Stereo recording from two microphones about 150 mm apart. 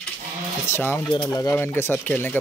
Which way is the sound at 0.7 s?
15° left (ahead or behind).